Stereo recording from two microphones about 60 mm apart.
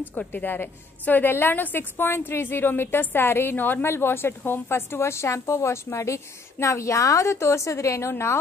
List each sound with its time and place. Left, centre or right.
0.0 s a woman's voice: left